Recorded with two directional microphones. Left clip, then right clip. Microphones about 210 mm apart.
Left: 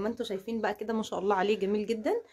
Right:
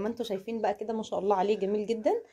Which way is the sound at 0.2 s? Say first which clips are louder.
Right 1 dB; centre (ahead or behind).